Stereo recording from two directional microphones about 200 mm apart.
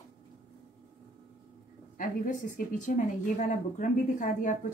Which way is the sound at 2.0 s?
40° left (ahead or behind).